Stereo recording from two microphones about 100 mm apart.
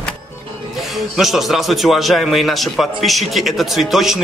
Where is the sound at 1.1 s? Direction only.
Centre (ahead or behind).